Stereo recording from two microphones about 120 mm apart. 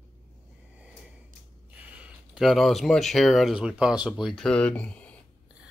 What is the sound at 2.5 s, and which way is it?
Speech, centre (ahead or behind).